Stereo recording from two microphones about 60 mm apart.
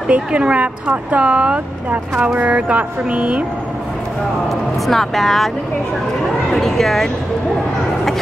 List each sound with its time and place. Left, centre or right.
0.1 s speech: centre
4.8 s speech: centre
6.5 s speech: centre